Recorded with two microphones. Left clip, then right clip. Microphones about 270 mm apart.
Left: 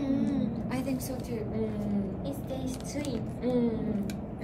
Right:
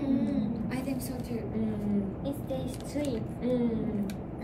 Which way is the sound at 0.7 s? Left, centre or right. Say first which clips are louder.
Left 1 dB; centre.